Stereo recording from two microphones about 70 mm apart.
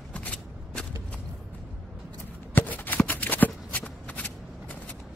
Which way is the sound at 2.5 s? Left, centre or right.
Left.